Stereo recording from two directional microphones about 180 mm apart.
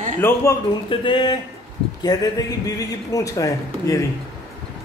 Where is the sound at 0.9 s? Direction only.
30° left (ahead or behind).